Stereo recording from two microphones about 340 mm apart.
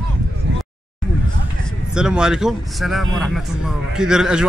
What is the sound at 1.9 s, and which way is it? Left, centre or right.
Speech, centre.